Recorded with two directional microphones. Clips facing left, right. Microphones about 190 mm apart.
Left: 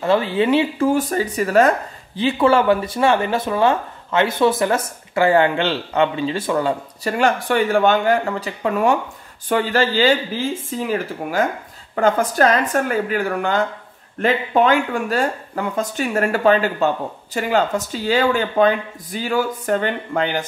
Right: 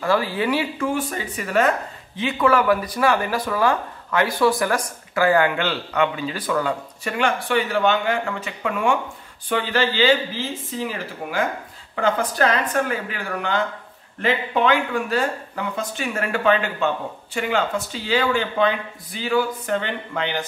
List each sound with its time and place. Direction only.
0.0 s speech: 25° left (ahead or behind)
0.8 s speech: 40° left (ahead or behind)
7.2 s speech: 45° left (ahead or behind)
11.9 s speech: 45° left (ahead or behind)